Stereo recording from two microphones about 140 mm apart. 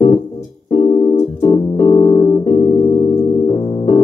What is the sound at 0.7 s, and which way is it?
Keyboard, 40° left (ahead or behind).